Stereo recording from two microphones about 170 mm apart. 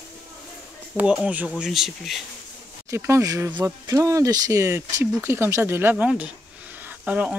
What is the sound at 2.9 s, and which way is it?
Speech, 15° right (ahead or behind).